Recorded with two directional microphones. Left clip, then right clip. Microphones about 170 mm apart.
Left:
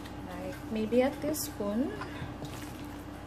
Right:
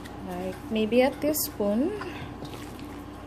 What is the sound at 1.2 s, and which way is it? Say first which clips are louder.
Speech: right 7 dB; 35° right (ahead or behind).